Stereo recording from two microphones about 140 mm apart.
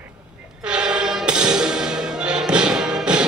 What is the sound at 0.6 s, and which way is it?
Music, 5° right (ahead or behind).